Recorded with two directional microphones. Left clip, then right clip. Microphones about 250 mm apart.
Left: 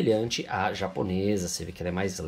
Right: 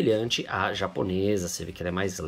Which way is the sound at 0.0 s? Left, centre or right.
Centre.